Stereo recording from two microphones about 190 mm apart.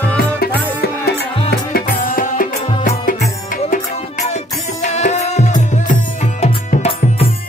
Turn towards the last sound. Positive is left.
turn(degrees=35)  # may be behind; listen again after turning